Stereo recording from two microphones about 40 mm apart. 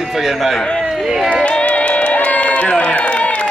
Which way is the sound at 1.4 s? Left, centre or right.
Left.